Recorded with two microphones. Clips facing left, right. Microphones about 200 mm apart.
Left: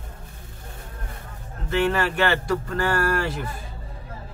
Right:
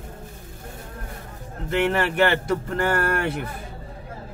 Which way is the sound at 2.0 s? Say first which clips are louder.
Right 2 dB; 25° right (ahead or behind).